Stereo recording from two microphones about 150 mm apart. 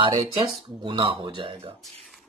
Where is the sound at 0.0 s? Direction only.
35° right (ahead or behind).